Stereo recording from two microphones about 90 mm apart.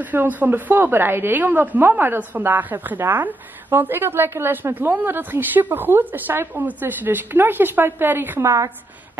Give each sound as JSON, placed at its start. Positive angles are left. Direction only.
{"t": 0.0, "sound": "a woman's voice", "side_deg": -20}